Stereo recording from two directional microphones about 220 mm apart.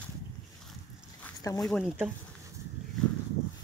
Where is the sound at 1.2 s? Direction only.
15° left (ahead or behind).